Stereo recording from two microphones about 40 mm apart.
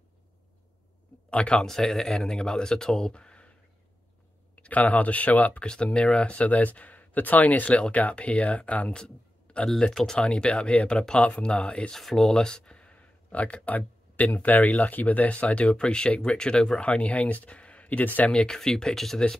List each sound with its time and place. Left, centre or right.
1.3 s speech: left
1.7 s speech: centre; by 3.5 s left
4.6 s speech: left
5.6 s speech: left
7.6 s speech: left
9.5 s a sound: left
10.1 s speech: left
11.9 s speech: centre
12.9 s a sound: left
14.4 s speech: left
17.8 s speech: left
18.3 s speech: left